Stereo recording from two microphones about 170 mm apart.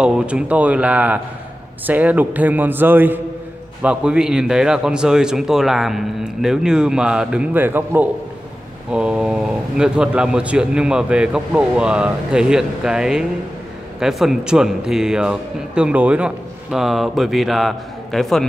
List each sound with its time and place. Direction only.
0.0 s a man's voice: 5° right (ahead or behind)